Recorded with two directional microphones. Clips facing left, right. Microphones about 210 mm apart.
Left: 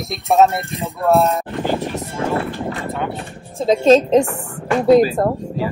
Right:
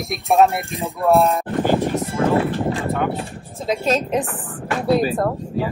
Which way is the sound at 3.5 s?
30° left (ahead or behind).